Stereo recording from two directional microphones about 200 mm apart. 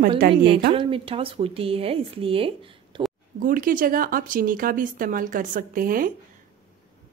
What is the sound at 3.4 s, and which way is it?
Speech, 45° right (ahead or behind).